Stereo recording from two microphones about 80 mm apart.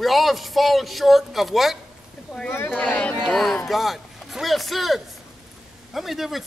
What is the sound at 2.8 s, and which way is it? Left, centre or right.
Speech, left.